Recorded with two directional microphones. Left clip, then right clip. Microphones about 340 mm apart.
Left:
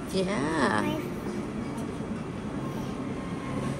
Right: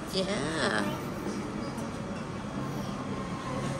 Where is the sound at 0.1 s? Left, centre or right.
Centre.